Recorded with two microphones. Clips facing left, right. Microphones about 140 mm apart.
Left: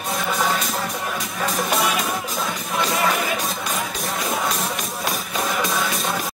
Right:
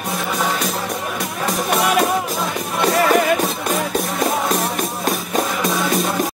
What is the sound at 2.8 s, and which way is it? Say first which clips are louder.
Music: right 8 dB; 60° right (ahead or behind).